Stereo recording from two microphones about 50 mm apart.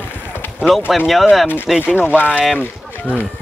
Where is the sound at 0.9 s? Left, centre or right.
Centre.